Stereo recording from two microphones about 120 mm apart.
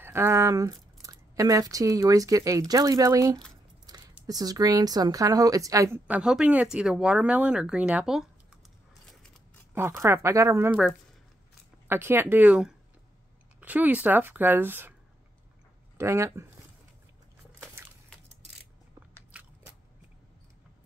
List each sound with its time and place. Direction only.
0.0 s speech: 20° right (ahead or behind)
3.9 s a sound: 35° right (ahead or behind)
4.3 s a woman's voice: 35° right (ahead or behind); by 8.3 s 5° right (ahead or behind)
9.8 s speech: 20° right (ahead or behind)
10.7 s speech: 5° right (ahead or behind)
11.9 s a woman's voice: 20° right (ahead or behind)
16.0 s speech: 20° right (ahead or behind)
19.3 s biting: 10° right (ahead or behind)